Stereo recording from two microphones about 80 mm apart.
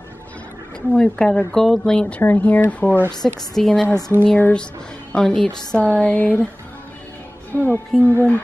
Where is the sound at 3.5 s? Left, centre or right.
Centre.